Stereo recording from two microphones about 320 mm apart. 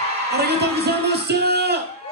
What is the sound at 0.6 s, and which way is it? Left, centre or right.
Speech, right.